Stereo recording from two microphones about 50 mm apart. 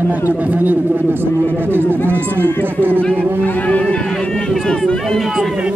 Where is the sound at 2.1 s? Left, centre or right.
Right.